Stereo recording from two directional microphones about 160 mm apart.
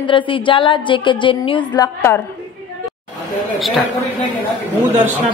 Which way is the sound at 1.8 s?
15° left (ahead or behind).